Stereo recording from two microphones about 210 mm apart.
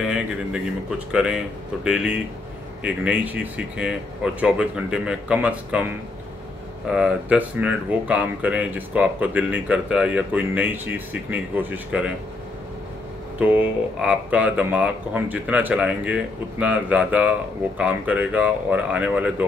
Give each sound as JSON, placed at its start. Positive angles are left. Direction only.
{"t": 0.0, "sound": "speech", "side_deg": -5}
{"t": 6.9, "sound": "speech", "side_deg": -5}
{"t": 13.4, "sound": "speech", "side_deg": -5}